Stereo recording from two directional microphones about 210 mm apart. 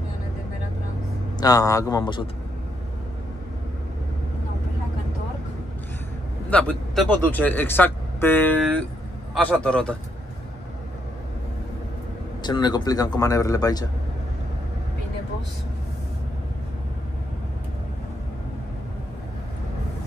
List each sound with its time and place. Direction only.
1.4 s speech: 15° left (ahead or behind)
6.5 s a man's voice: 5° left (ahead or behind)
12.4 s speech: 20° left (ahead or behind)